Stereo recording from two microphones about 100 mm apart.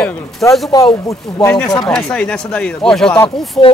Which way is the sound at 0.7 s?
40° left (ahead or behind).